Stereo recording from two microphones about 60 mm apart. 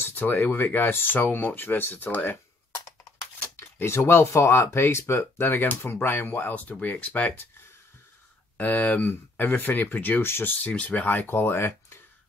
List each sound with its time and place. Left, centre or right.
0.0 s speech: left
3.5 s speech: left
8.5 s speech: left
10.6 s speech: left